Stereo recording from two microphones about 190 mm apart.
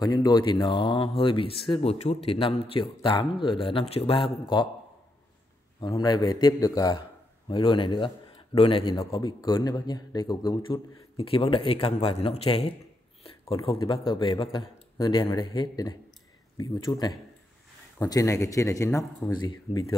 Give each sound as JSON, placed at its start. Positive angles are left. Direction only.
{"t": 0.0, "sound": "a man's voice", "side_deg": 20}
{"t": 5.8, "sound": "a man's voice", "side_deg": 25}
{"t": 13.7, "sound": "a man's voice", "side_deg": 25}